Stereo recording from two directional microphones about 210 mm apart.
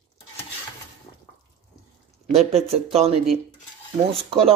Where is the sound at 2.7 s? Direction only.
30° right (ahead or behind).